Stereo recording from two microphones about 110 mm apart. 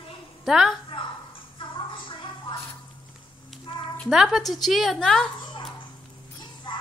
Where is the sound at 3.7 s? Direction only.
50° left (ahead or behind).